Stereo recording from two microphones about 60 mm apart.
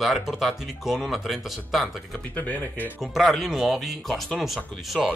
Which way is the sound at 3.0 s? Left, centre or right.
Centre.